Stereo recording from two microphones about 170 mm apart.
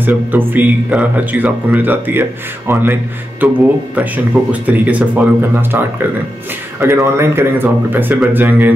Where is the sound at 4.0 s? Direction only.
10° right (ahead or behind).